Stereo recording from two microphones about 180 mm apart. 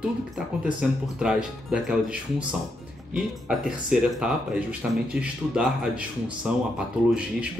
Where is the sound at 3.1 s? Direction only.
5° right (ahead or behind).